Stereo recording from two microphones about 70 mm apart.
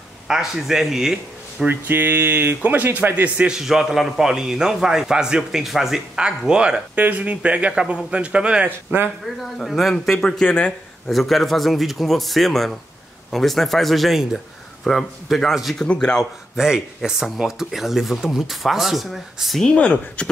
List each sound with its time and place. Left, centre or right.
0.3 s speech: centre
1.7 s speech: right
3.3 s a man's voice: centre
7.0 s a man's voice: right
8.6 s speech: right
9.2 s speech: centre
11.1 s speech: centre
15.8 s speech: centre
16.5 s speech: centre
19.7 s speech: centre